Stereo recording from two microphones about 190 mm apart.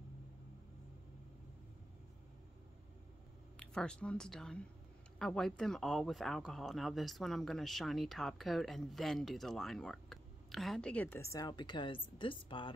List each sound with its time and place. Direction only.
3.5 s speech: 5° left (ahead or behind); by 12.7 s 25° left (ahead or behind)